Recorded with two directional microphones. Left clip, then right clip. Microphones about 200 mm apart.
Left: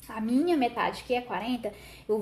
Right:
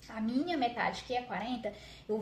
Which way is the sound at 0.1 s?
30° left (ahead or behind).